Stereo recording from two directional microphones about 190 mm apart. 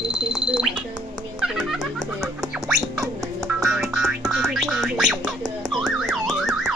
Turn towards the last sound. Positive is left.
turn(degrees=0)  # may be behind; listen again after turning